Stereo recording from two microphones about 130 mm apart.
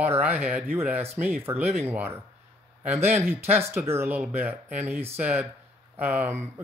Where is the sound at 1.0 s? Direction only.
55° right (ahead or behind).